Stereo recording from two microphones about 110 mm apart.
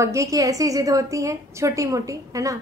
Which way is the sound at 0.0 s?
30° right (ahead or behind).